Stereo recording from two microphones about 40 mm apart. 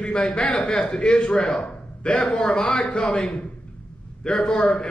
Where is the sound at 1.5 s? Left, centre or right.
Centre.